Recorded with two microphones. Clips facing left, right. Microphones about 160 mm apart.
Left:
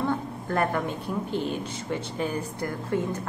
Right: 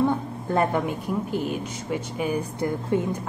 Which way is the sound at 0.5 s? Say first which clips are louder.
Right 3 dB; 20° right (ahead or behind).